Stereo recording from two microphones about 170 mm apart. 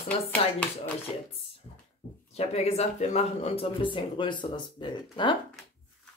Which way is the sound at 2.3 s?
40° left (ahead or behind).